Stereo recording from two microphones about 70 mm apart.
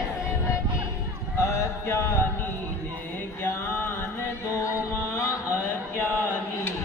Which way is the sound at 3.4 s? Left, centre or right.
Left.